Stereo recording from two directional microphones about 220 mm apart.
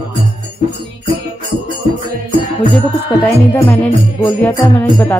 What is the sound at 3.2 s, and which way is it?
Music, 5° left (ahead or behind).